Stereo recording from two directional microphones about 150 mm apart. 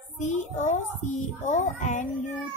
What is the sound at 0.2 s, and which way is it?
A child's voice, 55° left (ahead or behind).